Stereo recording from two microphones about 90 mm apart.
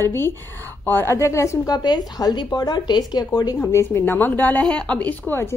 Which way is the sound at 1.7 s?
50° left (ahead or behind).